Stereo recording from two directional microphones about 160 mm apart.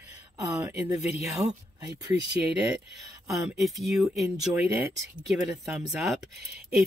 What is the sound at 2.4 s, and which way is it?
Speech, 10° right (ahead or behind).